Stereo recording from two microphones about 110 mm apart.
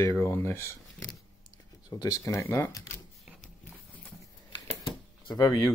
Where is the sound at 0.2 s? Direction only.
20° left (ahead or behind).